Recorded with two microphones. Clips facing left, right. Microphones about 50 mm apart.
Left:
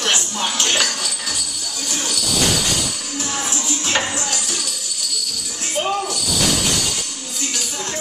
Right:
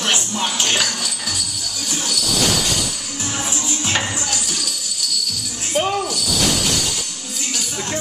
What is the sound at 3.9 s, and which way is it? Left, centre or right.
Music, centre.